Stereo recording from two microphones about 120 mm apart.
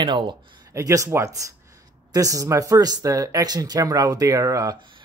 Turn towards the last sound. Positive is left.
turn(degrees=-25)  # may be behind; listen again after turning